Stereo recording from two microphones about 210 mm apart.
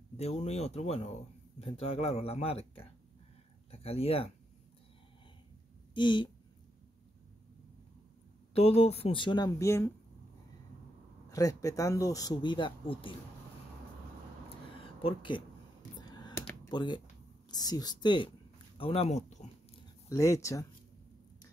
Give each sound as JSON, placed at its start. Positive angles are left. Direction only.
{"t": 0.2, "sound": "speech", "side_deg": 30}
{"t": 5.9, "sound": "speech", "side_deg": 20}
{"t": 8.5, "sound": "speech", "side_deg": 30}
{"t": 11.2, "sound": "speech", "side_deg": 15}
{"t": 14.8, "sound": "a sound", "side_deg": 25}
{"t": 16.0, "sound": "computer keyboard", "side_deg": 20}
{"t": 16.7, "sound": "speech", "side_deg": 20}
{"t": 18.8, "sound": "a sound", "side_deg": 30}
{"t": 20.1, "sound": "speech", "side_deg": 15}